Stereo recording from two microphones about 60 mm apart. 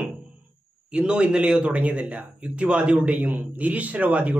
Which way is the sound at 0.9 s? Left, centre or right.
Centre.